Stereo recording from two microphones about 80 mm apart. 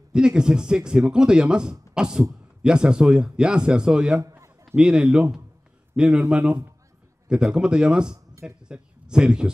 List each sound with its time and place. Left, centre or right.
0.1 s speech: centre
4.2 s a sound: right
4.7 s speech: centre